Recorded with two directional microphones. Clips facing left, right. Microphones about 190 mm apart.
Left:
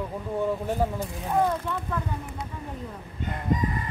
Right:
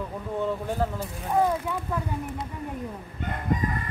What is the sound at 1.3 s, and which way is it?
Speech, 5° right (ahead or behind).